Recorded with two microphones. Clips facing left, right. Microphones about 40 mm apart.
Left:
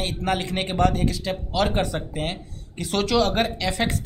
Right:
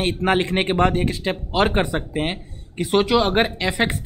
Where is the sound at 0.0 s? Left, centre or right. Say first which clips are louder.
Right 6 dB; right.